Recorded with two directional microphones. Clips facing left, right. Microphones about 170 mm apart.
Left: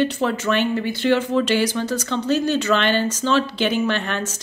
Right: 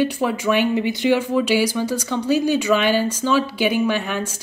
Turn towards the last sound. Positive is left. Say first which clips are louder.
# right 1 dB
turn(degrees=-10)  # may be behind; listen again after turning